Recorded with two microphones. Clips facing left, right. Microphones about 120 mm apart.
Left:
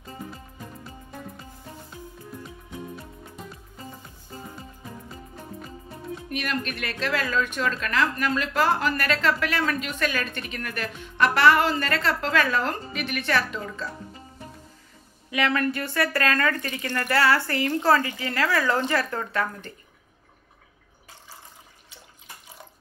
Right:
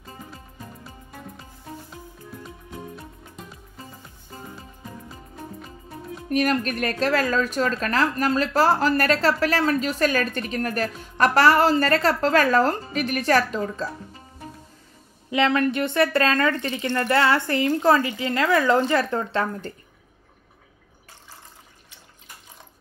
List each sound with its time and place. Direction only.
6.2 s speech: 40° right (ahead or behind)
15.3 s speech: 25° right (ahead or behind)